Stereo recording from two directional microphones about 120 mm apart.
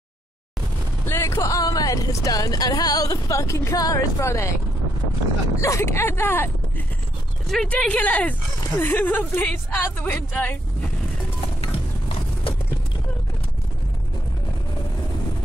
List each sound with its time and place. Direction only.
1.0 s speech: 25° left (ahead or behind)
5.6 s speech: 25° left (ahead or behind)
7.4 s speech: 5° left (ahead or behind)
11.4 s clip-clop: 50° left (ahead or behind)